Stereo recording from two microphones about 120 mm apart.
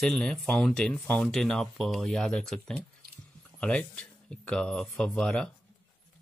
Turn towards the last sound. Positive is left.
turn(degrees=5)  # may be behind; listen again after turning